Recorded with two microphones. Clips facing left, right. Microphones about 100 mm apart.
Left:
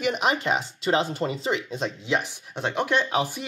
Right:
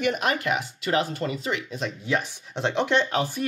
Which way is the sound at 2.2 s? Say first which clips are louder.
Right 1 dB; 5° left (ahead or behind).